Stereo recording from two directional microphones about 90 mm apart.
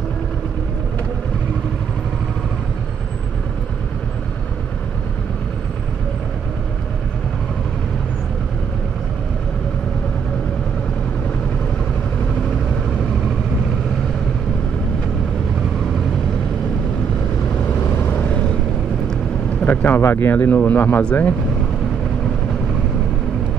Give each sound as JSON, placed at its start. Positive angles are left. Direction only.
{"t": 17.9, "sound": "vehicle", "side_deg": 15}
{"t": 19.6, "sound": "speech", "side_deg": 20}